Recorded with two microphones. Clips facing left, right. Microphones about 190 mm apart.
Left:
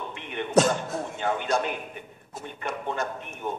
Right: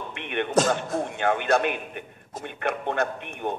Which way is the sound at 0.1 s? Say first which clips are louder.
Right 4 dB; 70° right (ahead or behind).